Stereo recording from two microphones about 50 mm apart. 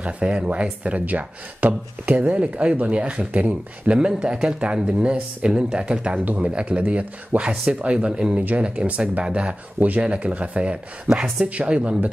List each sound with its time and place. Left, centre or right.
0.0 s speech: centre
6.1 s speech: right
6.5 s speech: right
11.1 s speech: centre
11.4 s speech: right